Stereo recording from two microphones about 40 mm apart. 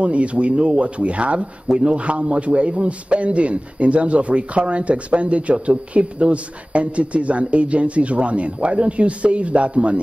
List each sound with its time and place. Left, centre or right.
0.0 s speech: right